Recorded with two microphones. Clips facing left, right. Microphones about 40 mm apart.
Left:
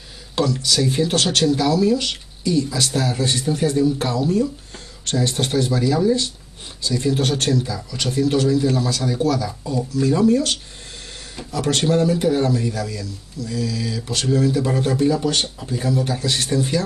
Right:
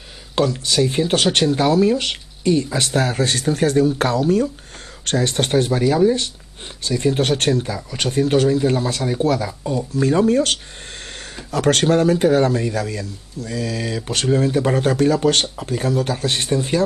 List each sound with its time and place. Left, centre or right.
0.4 s speech: right
14.0 s speech: right